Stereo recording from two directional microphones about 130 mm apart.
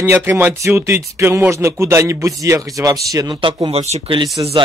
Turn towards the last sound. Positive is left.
turn(degrees=-30)  # may be behind; listen again after turning